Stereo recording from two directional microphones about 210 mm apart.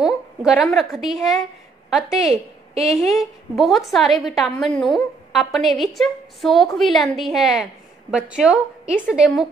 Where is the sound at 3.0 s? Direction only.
Centre (ahead or behind).